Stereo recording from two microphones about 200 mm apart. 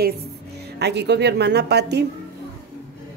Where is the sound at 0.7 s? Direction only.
55° right (ahead or behind).